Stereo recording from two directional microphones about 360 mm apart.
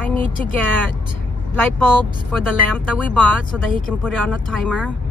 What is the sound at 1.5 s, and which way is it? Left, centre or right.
A woman's voice, centre.